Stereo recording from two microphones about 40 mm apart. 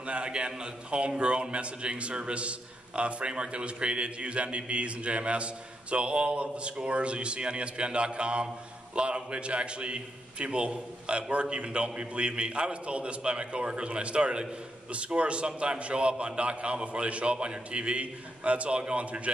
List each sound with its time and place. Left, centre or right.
0.0 s a man's voice: right